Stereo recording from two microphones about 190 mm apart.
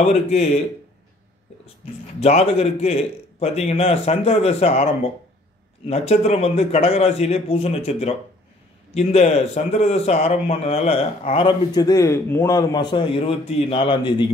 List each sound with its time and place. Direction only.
0.0 s a man's voice: 35° left (ahead or behind)
2.1 s a man's voice: 30° left (ahead or behind)